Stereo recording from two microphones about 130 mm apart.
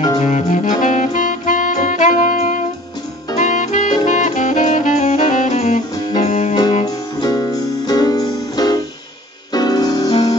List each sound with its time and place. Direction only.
0.2 s music: 65° left (ahead or behind)
3.3 s saxophone: 70° left (ahead or behind)
6.9 s music: 30° left (ahead or behind)